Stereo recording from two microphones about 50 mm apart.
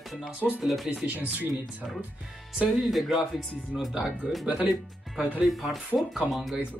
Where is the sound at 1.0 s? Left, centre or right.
Right.